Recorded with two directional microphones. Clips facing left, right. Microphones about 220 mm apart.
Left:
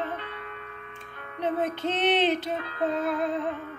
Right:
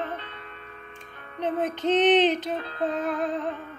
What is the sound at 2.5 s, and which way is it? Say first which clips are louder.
Music: right 1 dB; 30° right (ahead or behind).